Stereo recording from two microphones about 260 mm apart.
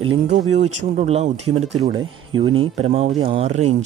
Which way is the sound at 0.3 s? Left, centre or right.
Right.